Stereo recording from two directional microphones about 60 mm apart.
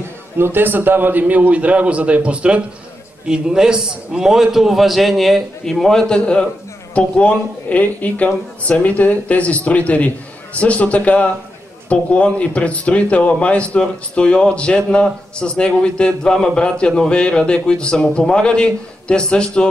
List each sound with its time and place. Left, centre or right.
0.4 s a man's voice: right; by 19.7 s centre